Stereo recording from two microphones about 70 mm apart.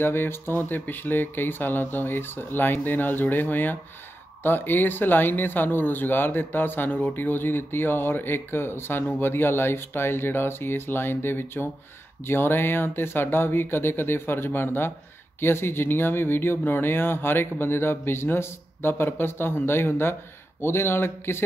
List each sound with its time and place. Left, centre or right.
0.0 s speech: left